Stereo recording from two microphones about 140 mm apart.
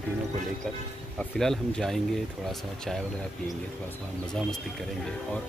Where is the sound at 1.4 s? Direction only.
5° left (ahead or behind).